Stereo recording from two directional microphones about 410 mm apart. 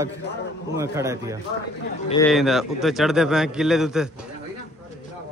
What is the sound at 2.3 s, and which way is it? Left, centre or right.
A man's voice, centre.